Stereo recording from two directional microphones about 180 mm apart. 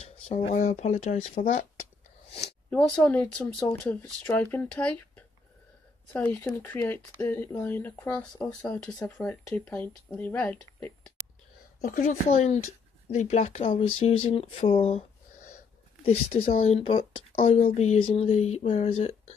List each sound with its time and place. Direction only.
0.0 s speech: 35° left (ahead or behind)
2.7 s speech: 5° left (ahead or behind)
11.8 s speech: 45° left (ahead or behind)
16.6 s speech: 35° left (ahead or behind)
17.4 s speech: 45° left (ahead or behind)